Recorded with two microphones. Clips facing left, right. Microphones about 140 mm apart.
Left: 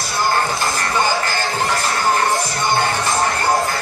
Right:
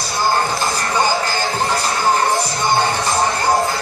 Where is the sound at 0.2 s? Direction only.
20° right (ahead or behind).